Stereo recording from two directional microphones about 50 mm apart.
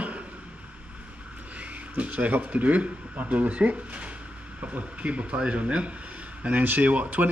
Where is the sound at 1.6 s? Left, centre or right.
Right.